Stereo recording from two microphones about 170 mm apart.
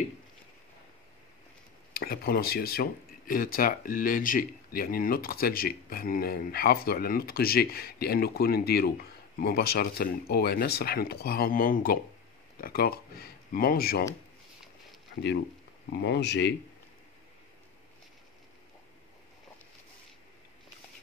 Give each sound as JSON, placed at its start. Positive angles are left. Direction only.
{"t": 2.0, "sound": "speech", "side_deg": 65}
{"t": 16.0, "sound": "speech", "side_deg": 90}